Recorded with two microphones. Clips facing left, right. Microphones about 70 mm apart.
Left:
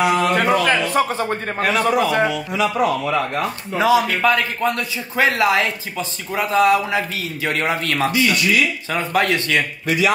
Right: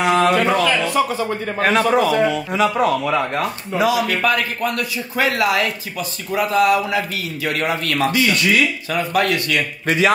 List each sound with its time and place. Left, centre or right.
0.0 s a sound: right
0.3 s a sound: left
0.9 s a man's voice: left
1.6 s a man's voice: right
2.0 s a man's voice: left
2.5 s speech: right
3.7 s a man's voice: left
9.8 s a man's voice: right